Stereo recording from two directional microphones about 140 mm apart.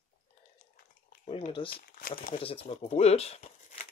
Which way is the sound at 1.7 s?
90° left.